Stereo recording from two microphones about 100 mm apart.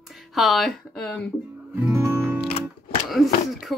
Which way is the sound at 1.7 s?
30° right (ahead or behind).